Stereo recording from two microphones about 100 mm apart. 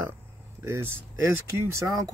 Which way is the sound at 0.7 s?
25° right (ahead or behind).